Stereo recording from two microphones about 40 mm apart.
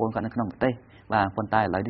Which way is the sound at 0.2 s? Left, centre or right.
Centre.